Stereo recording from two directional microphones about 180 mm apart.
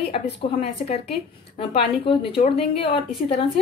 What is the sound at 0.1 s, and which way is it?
A woman's voice, 30° left (ahead or behind).